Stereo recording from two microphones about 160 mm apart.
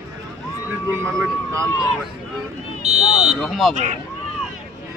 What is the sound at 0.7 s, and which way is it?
Speech, 10° right (ahead or behind).